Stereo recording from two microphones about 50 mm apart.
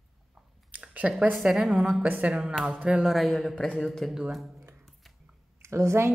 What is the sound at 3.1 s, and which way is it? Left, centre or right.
Speech, centre.